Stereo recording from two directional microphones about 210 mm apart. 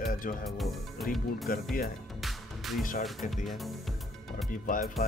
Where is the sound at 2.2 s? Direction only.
Centre (ahead or behind).